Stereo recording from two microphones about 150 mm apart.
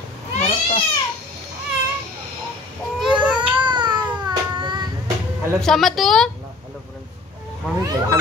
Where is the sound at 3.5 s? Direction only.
30° right (ahead or behind).